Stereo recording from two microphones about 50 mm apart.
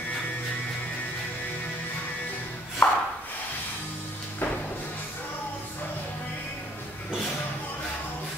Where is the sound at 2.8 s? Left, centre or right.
Left.